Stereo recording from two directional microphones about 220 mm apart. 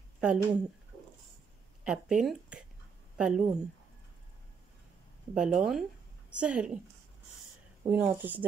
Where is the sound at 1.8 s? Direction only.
5° right (ahead or behind).